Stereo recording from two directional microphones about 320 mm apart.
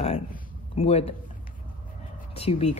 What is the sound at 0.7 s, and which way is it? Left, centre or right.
Speech, centre.